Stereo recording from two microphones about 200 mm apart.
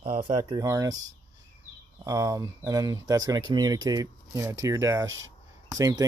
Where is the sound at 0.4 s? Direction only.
20° right (ahead or behind).